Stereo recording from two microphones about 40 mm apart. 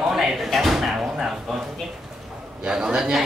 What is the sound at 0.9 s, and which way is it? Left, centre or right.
Drawer open or close, centre.